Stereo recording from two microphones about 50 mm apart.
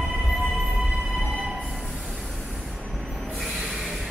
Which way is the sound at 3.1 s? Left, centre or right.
Centre.